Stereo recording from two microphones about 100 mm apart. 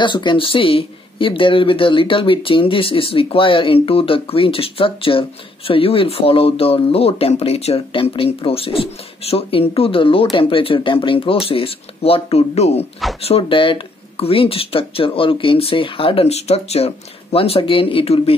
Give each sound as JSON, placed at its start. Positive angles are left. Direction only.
{"t": 0.0, "sound": "speech", "side_deg": 55}
{"t": 13.2, "sound": "speech", "side_deg": 70}